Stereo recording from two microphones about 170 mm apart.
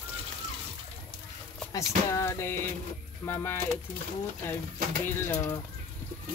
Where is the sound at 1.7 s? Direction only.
15° left (ahead or behind).